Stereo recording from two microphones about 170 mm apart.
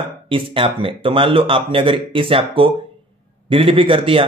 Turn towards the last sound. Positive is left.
turn(degrees=-30)  # may be behind; listen again after turning